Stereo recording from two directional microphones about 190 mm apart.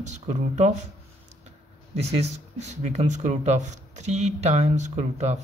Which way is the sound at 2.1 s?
35° right (ahead or behind).